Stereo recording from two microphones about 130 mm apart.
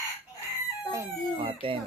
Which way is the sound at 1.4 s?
45° right (ahead or behind).